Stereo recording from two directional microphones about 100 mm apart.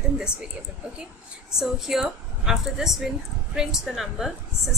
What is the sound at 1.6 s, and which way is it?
Speech, 5° right (ahead or behind).